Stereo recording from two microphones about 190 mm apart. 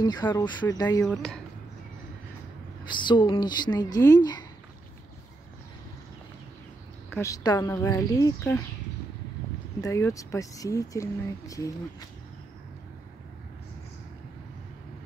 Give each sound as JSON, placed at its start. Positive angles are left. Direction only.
{"t": 0.0, "sound": "speech", "side_deg": 20}
{"t": 1.0, "sound": "speech", "side_deg": 0}
{"t": 2.9, "sound": "speech", "side_deg": 25}
{"t": 7.1, "sound": "speech", "side_deg": 15}
{"t": 9.8, "sound": "speech", "side_deg": 15}